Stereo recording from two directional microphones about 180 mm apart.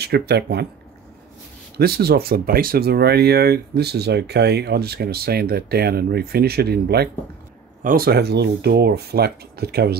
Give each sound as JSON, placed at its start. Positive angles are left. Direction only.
{"t": 0.0, "sound": "speech", "side_deg": -65}
{"t": 1.8, "sound": "speech", "side_deg": -60}